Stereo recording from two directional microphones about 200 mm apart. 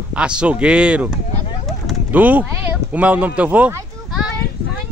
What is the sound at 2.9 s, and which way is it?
Speech, 5° right (ahead or behind).